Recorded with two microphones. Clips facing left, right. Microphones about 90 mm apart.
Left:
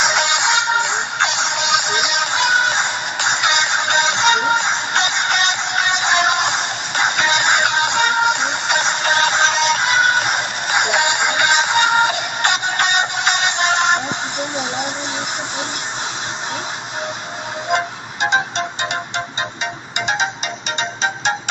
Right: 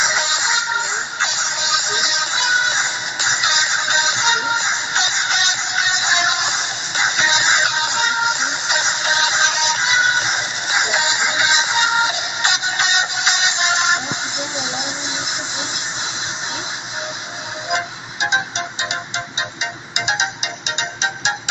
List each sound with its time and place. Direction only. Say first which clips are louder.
0.0 s music: left 3 dB; 60° left (ahead or behind)
17.6 s music: left 3 dB; 50° left (ahead or behind)